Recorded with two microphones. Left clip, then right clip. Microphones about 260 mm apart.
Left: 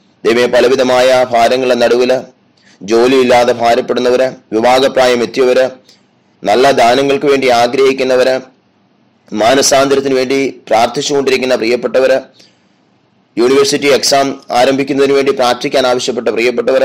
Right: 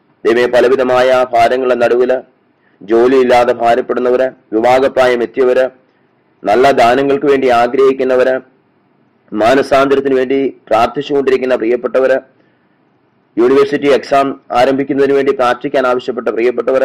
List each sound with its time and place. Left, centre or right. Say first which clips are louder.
0.2 s a man's voice: left 1 dB; left
13.3 s a man's voice: even; left